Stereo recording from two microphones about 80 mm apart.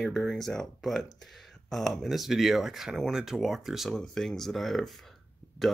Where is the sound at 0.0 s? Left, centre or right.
Centre.